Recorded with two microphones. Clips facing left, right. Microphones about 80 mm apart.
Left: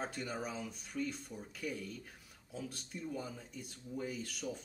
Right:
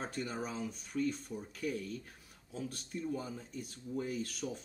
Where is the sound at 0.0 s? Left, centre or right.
Centre.